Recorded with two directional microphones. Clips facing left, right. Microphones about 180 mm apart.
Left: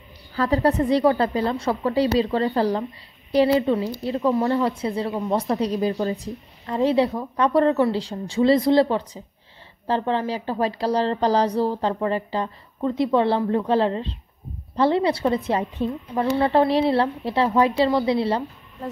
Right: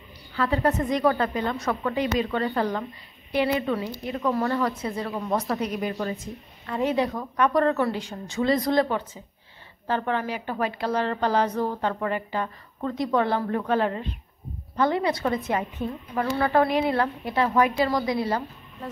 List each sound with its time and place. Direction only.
0.3 s a woman's voice: 40° left (ahead or behind)